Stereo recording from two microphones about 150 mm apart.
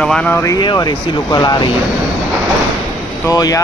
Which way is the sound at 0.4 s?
25° left (ahead or behind).